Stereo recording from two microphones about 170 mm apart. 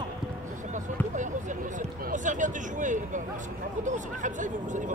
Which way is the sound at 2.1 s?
50° right (ahead or behind).